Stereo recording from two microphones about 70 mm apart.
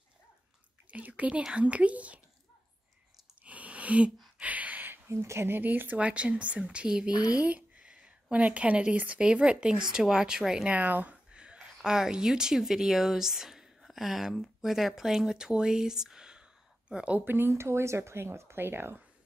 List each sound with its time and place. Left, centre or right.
0.9 s speech: centre
3.4 s a sound: centre; by 5.6 s right
5.6 s speech: right
7.1 s speech: left
7.3 s speech: right
10.7 s speech: right
11.3 s a woman's voice: centre
17.2 s speech: right